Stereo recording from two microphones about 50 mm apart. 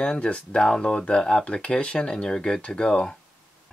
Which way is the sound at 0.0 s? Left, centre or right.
Centre.